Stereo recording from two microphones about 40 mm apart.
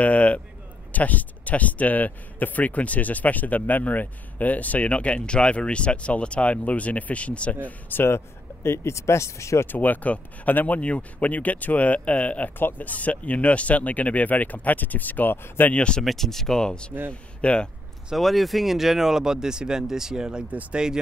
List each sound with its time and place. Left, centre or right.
0.0 s a sound: left
0.9 s speech: left
7.9 s speech: left
9.7 s speech: left
10.8 s speech: left
12.5 s speech: left
15.7 s speech: left
16.0 s speech: centre; by 17.6 s left
18.1 s speech: centre